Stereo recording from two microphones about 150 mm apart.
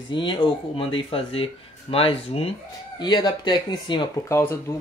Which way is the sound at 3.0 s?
30° left (ahead or behind).